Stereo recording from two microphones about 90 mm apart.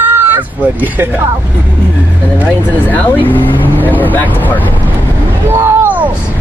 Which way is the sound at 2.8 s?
20° left (ahead or behind).